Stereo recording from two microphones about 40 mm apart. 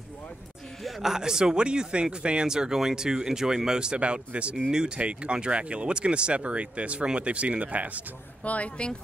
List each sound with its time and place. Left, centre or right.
1.0 s speech: centre
4.6 s speech: centre
4.9 s speech: right
8.5 s speech: left